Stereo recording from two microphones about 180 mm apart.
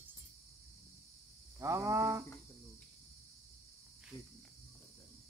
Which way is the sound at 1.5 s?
15° right (ahead or behind).